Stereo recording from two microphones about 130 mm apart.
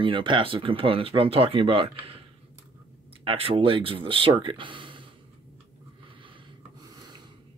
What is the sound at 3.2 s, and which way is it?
Speech, 45° right (ahead or behind).